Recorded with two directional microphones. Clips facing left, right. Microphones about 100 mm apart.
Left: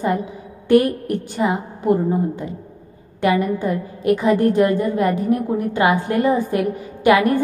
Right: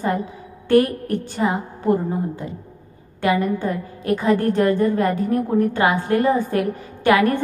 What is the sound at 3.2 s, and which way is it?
A woman's voice, 15° left (ahead or behind).